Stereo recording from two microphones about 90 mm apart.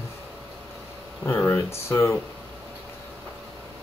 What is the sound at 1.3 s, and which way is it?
Speech, 30° left (ahead or behind).